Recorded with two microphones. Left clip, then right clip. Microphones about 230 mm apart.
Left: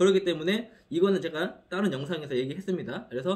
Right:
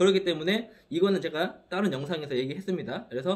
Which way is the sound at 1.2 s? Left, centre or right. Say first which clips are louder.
Right 2 dB; left.